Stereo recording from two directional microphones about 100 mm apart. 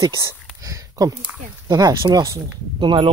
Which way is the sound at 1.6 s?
35° right (ahead or behind).